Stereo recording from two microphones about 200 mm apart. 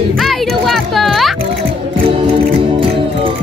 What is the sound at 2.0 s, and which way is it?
Music, 25° right (ahead or behind).